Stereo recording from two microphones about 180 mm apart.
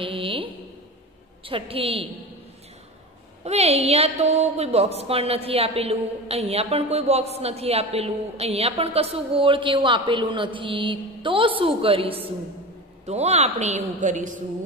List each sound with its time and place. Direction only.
0.0 s a sound: 30° right (ahead or behind)
1.4 s a woman's voice: 30° right (ahead or behind)
3.4 s a woman's voice: 35° right (ahead or behind)